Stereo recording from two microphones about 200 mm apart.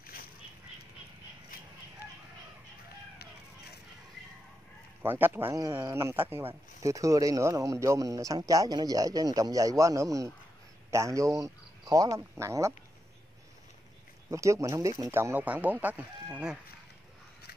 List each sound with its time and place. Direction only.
0.0 s a sound: 45° left (ahead or behind)
5.0 s a man's voice: 10° right (ahead or behind)
14.3 s a man's voice: 15° right (ahead or behind)